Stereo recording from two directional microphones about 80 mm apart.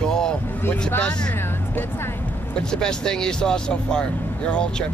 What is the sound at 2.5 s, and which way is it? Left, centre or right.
Speech, centre.